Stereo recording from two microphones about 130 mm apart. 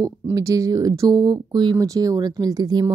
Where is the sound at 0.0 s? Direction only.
25° right (ahead or behind).